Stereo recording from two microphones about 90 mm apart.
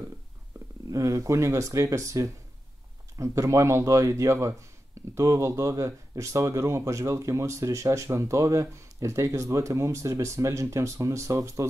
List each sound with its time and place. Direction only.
0.8 s speech: 35° right (ahead or behind)